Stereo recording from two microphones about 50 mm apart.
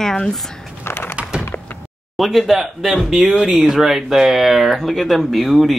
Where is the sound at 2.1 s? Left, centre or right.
Centre.